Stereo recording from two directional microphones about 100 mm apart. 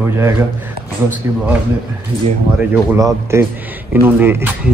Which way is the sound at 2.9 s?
30° right (ahead or behind).